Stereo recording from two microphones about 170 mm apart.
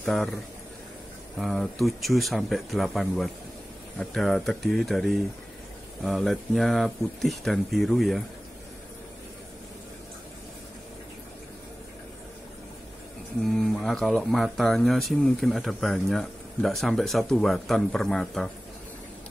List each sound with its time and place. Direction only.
0.0 s speech: centre (ahead or behind)
1.4 s speech: centre (ahead or behind)
13.4 s speech: centre (ahead or behind)